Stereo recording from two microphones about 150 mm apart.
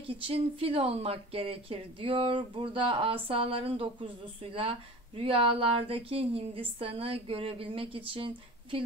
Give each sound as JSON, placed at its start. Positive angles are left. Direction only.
{"t": 0.0, "sound": "a woman's voice", "side_deg": -40}